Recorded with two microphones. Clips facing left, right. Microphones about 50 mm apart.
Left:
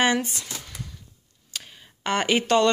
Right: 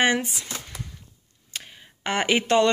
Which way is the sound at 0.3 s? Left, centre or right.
Centre.